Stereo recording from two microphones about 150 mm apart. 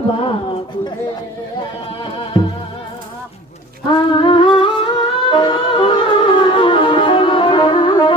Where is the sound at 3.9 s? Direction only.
35° left (ahead or behind).